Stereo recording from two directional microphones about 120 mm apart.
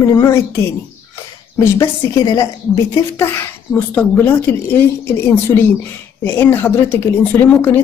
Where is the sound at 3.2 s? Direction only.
20° left (ahead or behind).